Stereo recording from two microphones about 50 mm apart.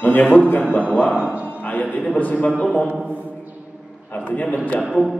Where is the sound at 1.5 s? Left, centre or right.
Left.